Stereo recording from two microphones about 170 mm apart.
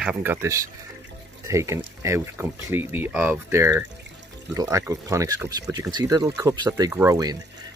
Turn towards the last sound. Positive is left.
turn(degrees=-20)  # may be behind; listen again after turning